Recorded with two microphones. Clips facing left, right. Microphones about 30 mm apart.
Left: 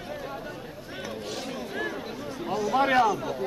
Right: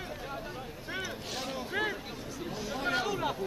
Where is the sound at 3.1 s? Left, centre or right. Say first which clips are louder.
Left 5 dB; right.